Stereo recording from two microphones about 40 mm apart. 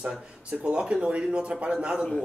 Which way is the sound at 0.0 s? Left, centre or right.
Right.